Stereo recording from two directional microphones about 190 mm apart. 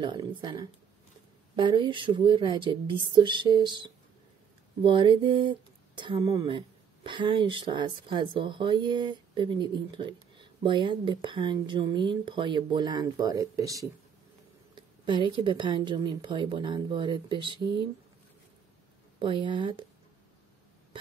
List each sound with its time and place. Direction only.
0.0 s speech: 25° right (ahead or behind)
19.1 s speech: 25° right (ahead or behind)